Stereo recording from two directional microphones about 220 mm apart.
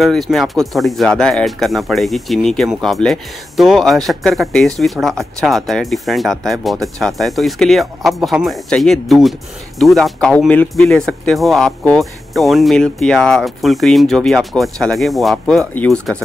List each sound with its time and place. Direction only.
0.0 s speech: centre (ahead or behind)